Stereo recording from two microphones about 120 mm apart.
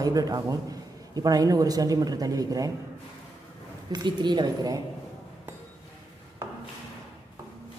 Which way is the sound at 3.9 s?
40° right (ahead or behind).